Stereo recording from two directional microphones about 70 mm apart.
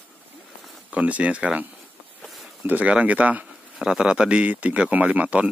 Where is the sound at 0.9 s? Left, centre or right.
Right.